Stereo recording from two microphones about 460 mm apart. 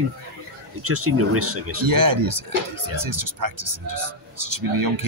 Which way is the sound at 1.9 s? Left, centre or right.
Right.